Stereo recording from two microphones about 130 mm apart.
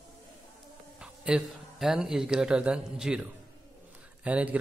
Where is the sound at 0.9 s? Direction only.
5° right (ahead or behind).